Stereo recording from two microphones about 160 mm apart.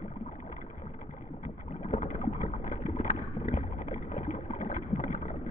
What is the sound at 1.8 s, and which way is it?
Boat, 50° left (ahead or behind).